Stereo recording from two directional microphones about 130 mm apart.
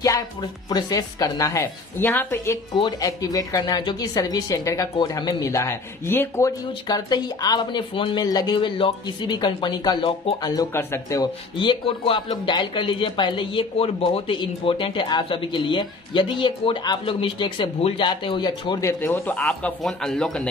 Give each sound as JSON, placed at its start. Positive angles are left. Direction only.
{"t": 0.0, "sound": "a woman's voice", "side_deg": 30}
{"t": 2.7, "sound": "speech", "side_deg": 40}
{"t": 3.1, "sound": "a woman's voice", "side_deg": 30}
{"t": 6.9, "sound": "a woman's voice", "side_deg": 30}
{"t": 11.6, "sound": "speech", "side_deg": 40}
{"t": 18.8, "sound": "speech", "side_deg": 20}